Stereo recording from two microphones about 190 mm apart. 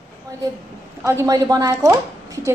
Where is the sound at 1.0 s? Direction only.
15° right (ahead or behind).